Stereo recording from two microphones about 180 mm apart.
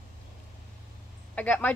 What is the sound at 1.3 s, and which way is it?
Speech, 10° left (ahead or behind).